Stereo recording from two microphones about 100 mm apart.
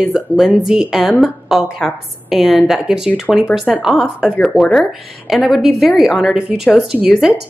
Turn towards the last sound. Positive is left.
turn(degrees=-5)  # may be behind; listen again after turning